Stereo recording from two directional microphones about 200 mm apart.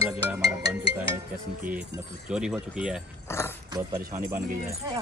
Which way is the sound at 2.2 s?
5° right (ahead or behind).